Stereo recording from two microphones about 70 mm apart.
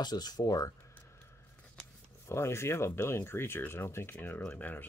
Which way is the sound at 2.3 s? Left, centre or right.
Left.